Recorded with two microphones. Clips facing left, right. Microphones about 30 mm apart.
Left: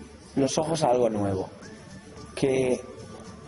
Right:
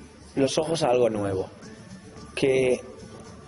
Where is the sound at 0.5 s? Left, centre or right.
Right.